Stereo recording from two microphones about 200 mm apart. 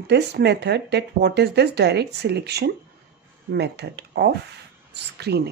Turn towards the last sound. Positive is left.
turn(degrees=-55)  # may be behind; listen again after turning